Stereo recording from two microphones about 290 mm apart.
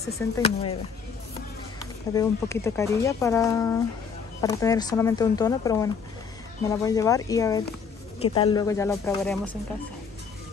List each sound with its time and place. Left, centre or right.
0.4 s speech: left
2.1 s speech: centre